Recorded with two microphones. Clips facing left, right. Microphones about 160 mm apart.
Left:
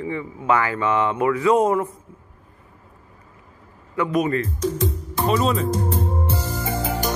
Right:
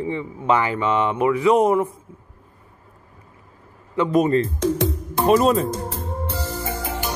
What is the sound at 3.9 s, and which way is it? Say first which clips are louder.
Speech: right 3 dB; 25° right (ahead or behind).